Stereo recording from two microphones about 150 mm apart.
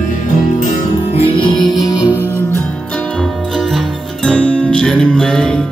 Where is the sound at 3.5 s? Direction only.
Centre (ahead or behind).